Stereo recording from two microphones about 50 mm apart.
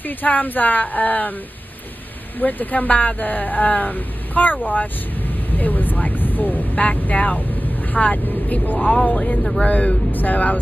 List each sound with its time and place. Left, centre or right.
0.2 s speech: left
2.4 s speech: left
5.6 s speech: left